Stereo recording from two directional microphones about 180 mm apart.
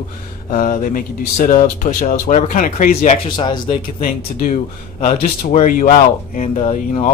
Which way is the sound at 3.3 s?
25° left (ahead or behind).